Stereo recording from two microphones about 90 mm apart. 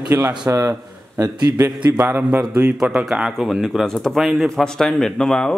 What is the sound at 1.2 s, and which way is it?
Speech, 45° right (ahead or behind).